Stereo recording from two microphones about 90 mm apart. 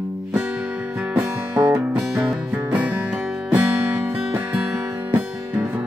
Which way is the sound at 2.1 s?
Centre (ahead or behind).